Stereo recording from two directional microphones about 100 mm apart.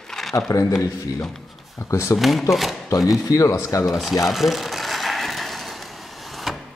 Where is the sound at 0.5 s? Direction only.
30° left (ahead or behind).